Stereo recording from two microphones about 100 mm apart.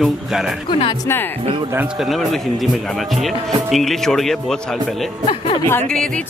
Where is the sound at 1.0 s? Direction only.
20° left (ahead or behind).